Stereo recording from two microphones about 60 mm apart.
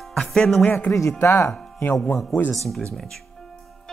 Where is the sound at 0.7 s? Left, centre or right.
Left.